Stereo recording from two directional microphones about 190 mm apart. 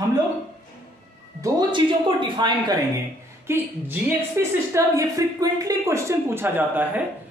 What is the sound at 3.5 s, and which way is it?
A woman's voice, 10° right (ahead or behind).